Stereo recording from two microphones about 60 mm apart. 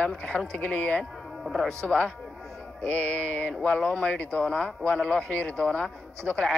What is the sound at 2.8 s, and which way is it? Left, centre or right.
Mantra, left.